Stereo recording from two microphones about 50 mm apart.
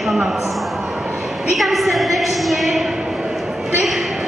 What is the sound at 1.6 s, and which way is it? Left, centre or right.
Speech, centre.